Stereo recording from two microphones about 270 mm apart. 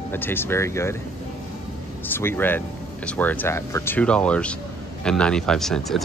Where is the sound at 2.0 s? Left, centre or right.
Centre.